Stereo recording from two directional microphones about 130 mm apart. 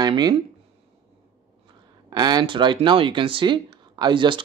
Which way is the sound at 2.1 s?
35° right (ahead or behind).